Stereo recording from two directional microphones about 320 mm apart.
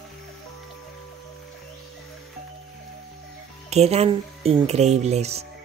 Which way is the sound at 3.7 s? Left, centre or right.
Centre.